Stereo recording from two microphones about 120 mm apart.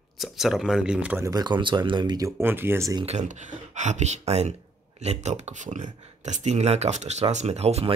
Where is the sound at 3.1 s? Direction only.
80° right.